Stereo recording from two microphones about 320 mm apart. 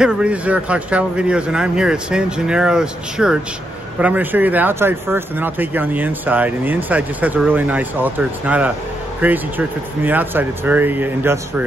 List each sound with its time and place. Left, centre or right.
0.0 s speech: centre